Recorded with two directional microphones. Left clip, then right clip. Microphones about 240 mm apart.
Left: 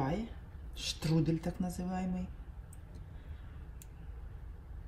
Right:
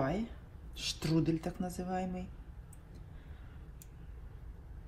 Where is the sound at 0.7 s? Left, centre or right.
Centre.